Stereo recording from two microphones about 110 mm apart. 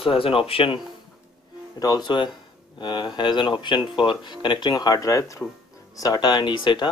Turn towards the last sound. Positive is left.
turn(degrees=45)  # may be behind; listen again after turning